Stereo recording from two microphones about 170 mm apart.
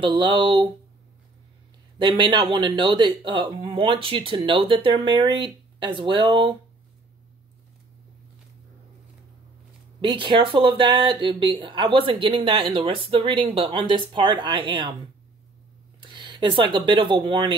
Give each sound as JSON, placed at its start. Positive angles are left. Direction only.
{"t": 0.0, "sound": "speech", "side_deg": -30}
{"t": 2.0, "sound": "speech", "side_deg": -30}
{"t": 10.0, "sound": "speech", "side_deg": -30}
{"t": 16.0, "sound": "speech", "side_deg": -25}